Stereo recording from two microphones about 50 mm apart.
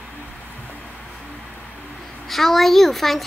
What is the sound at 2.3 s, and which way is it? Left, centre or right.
Speech, centre.